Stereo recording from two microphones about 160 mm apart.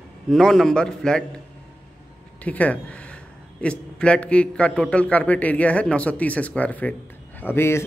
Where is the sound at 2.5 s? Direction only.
10° left (ahead or behind).